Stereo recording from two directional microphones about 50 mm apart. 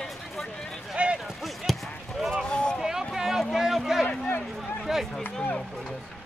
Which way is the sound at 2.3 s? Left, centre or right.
Centre.